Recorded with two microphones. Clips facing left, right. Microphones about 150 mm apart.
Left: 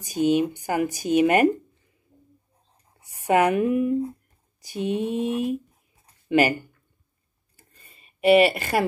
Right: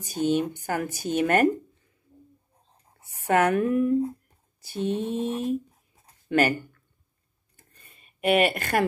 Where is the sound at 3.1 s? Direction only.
10° left (ahead or behind).